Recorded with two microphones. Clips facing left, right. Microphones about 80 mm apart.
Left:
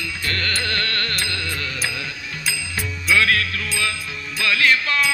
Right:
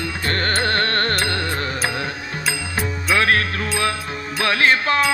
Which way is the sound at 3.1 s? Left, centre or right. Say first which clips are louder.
Right 1 dB; right.